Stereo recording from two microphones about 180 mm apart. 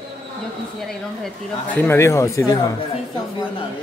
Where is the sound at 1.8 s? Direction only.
15° left (ahead or behind).